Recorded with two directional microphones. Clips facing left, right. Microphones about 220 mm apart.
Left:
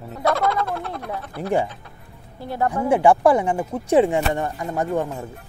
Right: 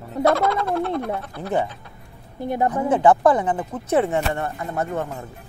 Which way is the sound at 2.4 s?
20° right (ahead or behind).